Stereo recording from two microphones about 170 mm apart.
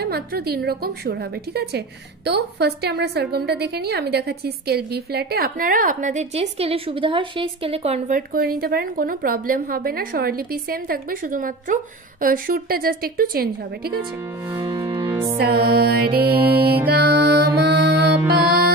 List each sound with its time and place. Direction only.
0.0 s a woman's voice: 65° right (ahead or behind); by 8.2 s 40° right (ahead or behind)
8.3 s a woman's voice: 60° right (ahead or behind)
14.6 s music: 20° right (ahead or behind)
15.3 s a woman's voice: 65° right (ahead or behind)
16.5 s music: 65° right (ahead or behind)